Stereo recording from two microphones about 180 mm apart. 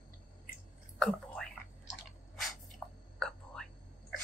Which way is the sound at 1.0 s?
5° left (ahead or behind).